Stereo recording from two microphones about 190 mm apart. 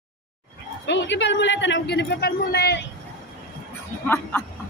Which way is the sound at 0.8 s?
70° left (ahead or behind).